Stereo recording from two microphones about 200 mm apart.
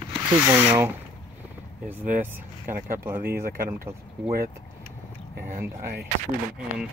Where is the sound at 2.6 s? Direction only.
40° right (ahead or behind).